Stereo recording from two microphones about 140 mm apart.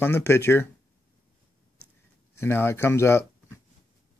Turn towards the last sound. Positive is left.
turn(degrees=20)  # may be behind; listen again after turning